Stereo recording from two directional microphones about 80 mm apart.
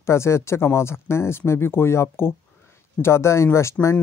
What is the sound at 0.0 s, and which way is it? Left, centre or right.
Speech, left.